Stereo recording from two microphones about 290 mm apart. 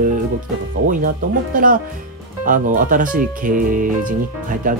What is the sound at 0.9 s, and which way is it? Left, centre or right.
Speech, right.